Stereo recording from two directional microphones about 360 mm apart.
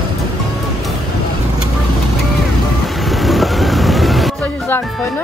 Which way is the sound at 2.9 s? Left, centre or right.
Centre.